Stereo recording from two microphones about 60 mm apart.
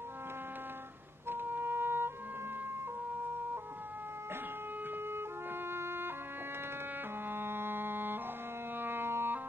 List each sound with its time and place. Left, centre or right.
1.3 s music: right
5.7 s music: right
7.2 s music: right